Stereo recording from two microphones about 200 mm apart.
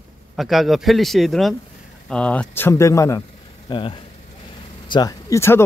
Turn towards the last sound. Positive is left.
turn(degrees=15)  # may be behind; listen again after turning